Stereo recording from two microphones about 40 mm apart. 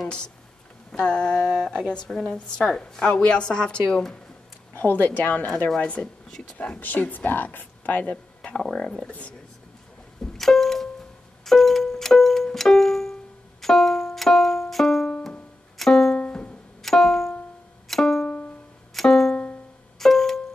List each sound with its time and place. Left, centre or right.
0.9 s a woman's voice: left
2.3 s a woman's voice: left
4.7 s speech: left
6.8 s speech: left
7.8 s speech: left
8.7 s speech: centre
10.2 s music: centre